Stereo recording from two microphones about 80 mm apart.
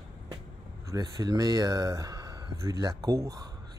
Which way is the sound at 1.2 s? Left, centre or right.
Right.